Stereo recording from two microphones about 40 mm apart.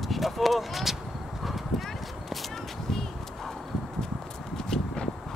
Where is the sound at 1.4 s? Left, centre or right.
Centre.